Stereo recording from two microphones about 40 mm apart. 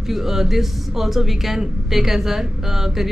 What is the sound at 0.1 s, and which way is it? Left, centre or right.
Speech, centre.